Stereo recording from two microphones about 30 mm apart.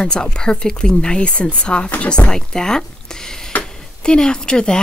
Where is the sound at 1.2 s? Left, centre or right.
Left.